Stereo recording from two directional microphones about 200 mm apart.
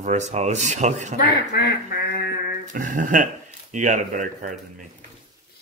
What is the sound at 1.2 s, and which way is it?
Speech, 50° left (ahead or behind).